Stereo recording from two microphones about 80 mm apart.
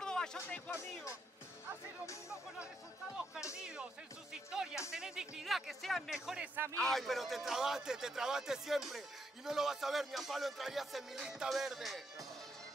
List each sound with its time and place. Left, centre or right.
0.0 s music: centre
0.7 s speech: left
3.5 s speech: centre
6.4 s speech: right
6.8 s speech: centre